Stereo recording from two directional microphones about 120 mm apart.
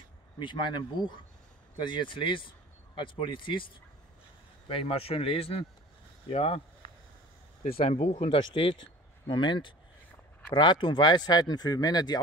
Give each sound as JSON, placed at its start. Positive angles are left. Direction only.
{"t": 0.4, "sound": "speech", "side_deg": 40}
{"t": 4.6, "sound": "a man's voice", "side_deg": 50}
{"t": 7.8, "sound": "speech", "side_deg": 65}
{"t": 9.3, "sound": "speech", "side_deg": 40}